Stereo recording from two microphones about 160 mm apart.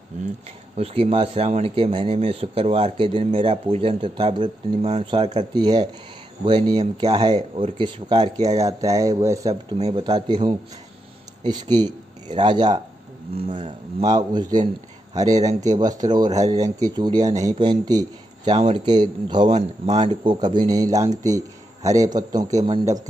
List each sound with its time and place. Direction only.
0.1 s speech: 50° right (ahead or behind)
0.7 s a man's voice: 40° right (ahead or behind); by 9.5 s 20° right (ahead or behind)
9.8 s speech: 40° right (ahead or behind)
10.0 s a man's voice: 30° right (ahead or behind)
19.5 s speech: 40° right (ahead or behind)
20.3 s a man's voice: 25° right (ahead or behind)